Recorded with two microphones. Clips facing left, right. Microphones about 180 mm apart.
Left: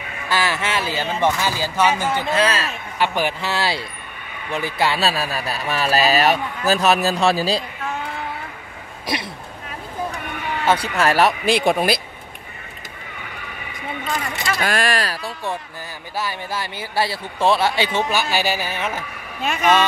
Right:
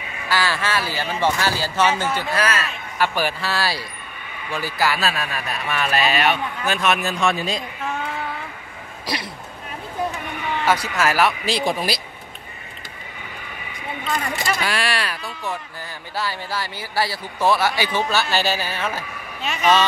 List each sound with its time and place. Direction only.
0.3 s a man's voice: 20° left (ahead or behind)
9.0 s speech: 25° left (ahead or behind)
10.6 s a man's voice: 30° left (ahead or behind)
11.4 s speech: 55° left (ahead or behind)
14.6 s speech: 45° left (ahead or behind)
16.2 s speech: 20° left (ahead or behind)
18.1 s speech: 15° left (ahead or behind)
19.4 s speech: 50° left (ahead or behind)